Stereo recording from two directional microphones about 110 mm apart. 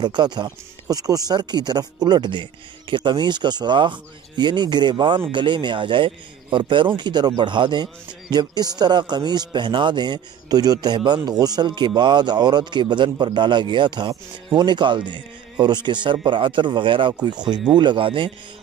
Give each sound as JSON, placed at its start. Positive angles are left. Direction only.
{"t": 0.0, "sound": "a man's voice", "side_deg": -40}